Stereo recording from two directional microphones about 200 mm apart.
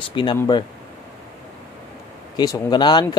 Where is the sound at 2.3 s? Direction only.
20° left (ahead or behind).